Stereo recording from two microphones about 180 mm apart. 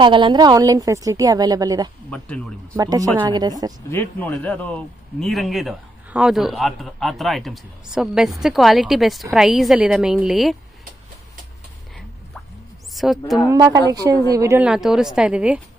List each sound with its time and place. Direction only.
0.0 s a woman's voice: 25° right (ahead or behind)
2.0 s speech: 5° left (ahead or behind)
2.7 s a woman's voice: 20° right (ahead or behind)
3.9 s a man's voice: 10° left (ahead or behind)
12.9 s a woman's voice: centre (ahead or behind)
13.5 s a woman's voice: 20° right (ahead or behind)
14.6 s a man's voice: 5° right (ahead or behind)